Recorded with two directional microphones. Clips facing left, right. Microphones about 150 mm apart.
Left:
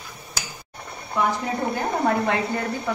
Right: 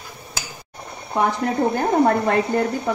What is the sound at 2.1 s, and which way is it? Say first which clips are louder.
Speech: right 4 dB; 45° right (ahead or behind).